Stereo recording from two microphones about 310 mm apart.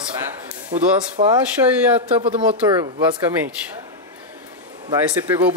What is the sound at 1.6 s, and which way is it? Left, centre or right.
Speech, centre.